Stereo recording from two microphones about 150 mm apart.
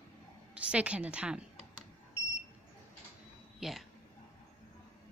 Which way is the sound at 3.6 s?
Centre (ahead or behind).